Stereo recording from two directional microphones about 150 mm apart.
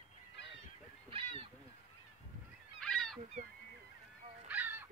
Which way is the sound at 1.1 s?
35° right (ahead or behind).